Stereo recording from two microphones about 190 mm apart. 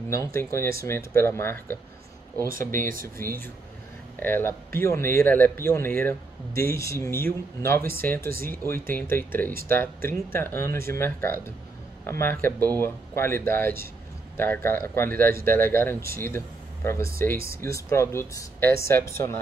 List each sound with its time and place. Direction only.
0.2 s speech: 15° left (ahead or behind)
2.7 s speech: 45° right (ahead or behind)
4.2 s speech: 10° left (ahead or behind)